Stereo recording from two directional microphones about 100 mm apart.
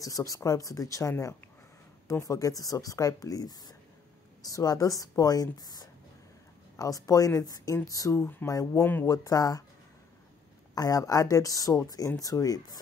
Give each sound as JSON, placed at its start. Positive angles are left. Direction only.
{"t": 0.0, "sound": "speech", "side_deg": 35}
{"t": 10.7, "sound": "speech", "side_deg": 40}